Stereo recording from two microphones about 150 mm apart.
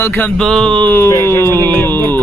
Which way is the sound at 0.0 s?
10° left (ahead or behind).